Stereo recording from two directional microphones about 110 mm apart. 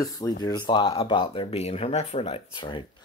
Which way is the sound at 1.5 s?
65° left (ahead or behind).